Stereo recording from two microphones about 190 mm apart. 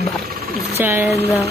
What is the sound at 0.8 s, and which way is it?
Speech, 15° right (ahead or behind).